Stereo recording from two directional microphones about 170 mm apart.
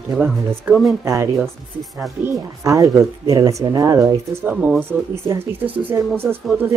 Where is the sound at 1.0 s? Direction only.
15° right (ahead or behind).